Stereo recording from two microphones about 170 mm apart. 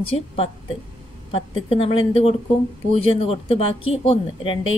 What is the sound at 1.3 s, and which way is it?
Speech, 35° left (ahead or behind).